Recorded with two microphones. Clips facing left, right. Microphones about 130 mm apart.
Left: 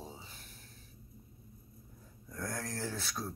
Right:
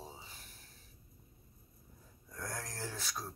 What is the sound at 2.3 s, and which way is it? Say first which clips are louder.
Speech: left 4 dB; 10° right (ahead or behind).